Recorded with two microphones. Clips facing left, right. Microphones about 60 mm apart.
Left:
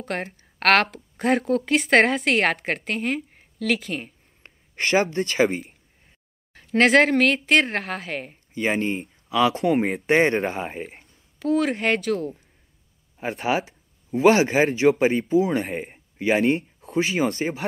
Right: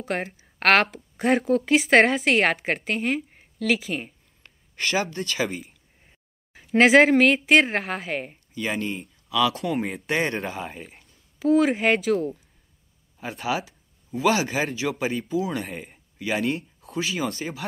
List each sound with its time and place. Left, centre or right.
0.0 s a woman's voice: centre
4.4 s speech: left
6.5 s a woman's voice: centre
8.5 s speech: left
10.4 s speech: left
10.7 s speech: left
11.3 s a woman's voice: centre
13.4 s speech: left
15.9 s a sound: left
16.8 s speech: left